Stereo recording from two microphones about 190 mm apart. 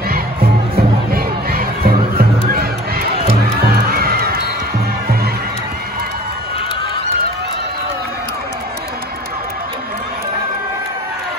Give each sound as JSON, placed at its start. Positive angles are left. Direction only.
{"t": 0.1, "sound": "music", "side_deg": -55}
{"t": 2.5, "sound": "crowd", "side_deg": -55}
{"t": 3.6, "sound": "music", "side_deg": -55}